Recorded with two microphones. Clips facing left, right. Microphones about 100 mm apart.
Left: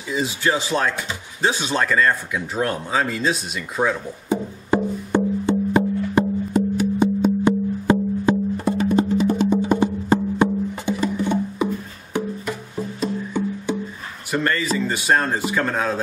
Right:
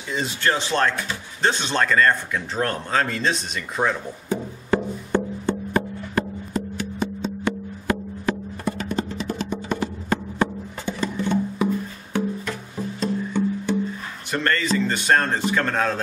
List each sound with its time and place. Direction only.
0.1 s speech: 5° left (ahead or behind)
4.3 s wood block: 15° left (ahead or behind)
7.0 s music: 15° left (ahead or behind)
7.8 s wood block: 20° left (ahead or behind)
14.3 s a man's voice: 10° left (ahead or behind)